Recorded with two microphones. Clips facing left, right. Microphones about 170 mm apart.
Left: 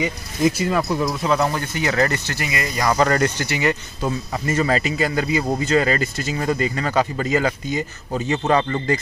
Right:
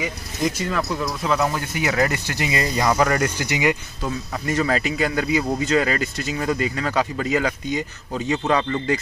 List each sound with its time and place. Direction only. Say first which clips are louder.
0.0 s speech: left 4 dB; 5° left (ahead or behind)
1.2 s speech: left 2 dB; centre (ahead or behind); by 2.9 s 25° right (ahead or behind)
2.9 s speech: left 3 dB; 5° right (ahead or behind)
4.3 s speech: left 1 dB; centre (ahead or behind)